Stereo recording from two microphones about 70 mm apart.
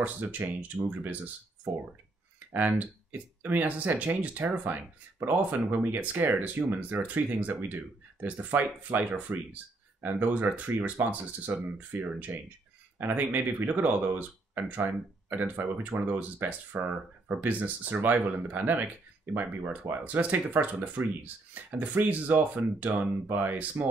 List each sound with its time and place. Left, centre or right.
0.0 s speech: right
2.5 s speech: right